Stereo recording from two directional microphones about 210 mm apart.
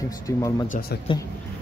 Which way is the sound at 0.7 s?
45° left (ahead or behind).